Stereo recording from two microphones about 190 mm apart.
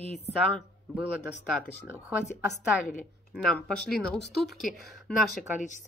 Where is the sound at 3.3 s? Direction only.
5° left (ahead or behind).